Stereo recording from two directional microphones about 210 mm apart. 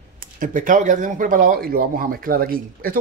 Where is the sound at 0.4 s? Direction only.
40° right (ahead or behind).